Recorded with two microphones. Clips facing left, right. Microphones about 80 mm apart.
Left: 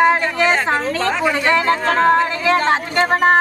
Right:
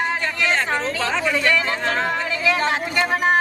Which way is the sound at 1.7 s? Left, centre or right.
Centre.